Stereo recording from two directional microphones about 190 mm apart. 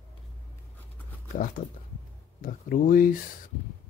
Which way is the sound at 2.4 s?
45° left (ahead or behind).